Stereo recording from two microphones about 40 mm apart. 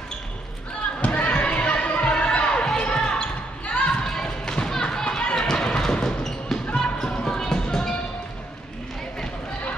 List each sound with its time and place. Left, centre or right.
1.0 s a sound: left
2.8 s basketball bounce: left
4.0 s basketball bounce: centre
6.7 s music: left